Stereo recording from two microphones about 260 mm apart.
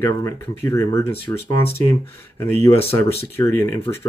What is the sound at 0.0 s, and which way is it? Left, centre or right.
Speech, centre.